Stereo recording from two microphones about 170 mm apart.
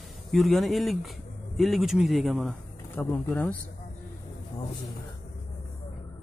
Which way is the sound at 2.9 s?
10° left (ahead or behind).